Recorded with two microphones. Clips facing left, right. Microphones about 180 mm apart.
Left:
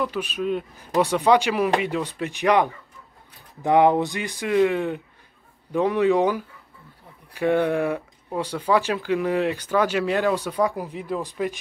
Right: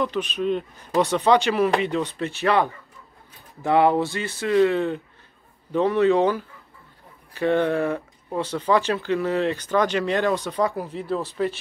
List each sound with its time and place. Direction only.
0.0 s speech: 10° left (ahead or behind)